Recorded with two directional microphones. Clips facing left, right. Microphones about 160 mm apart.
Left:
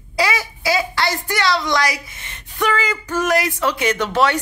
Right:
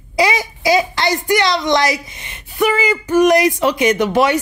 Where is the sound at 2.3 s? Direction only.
15° right (ahead or behind).